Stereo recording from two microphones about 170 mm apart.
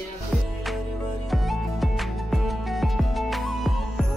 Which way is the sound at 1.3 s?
Centre (ahead or behind).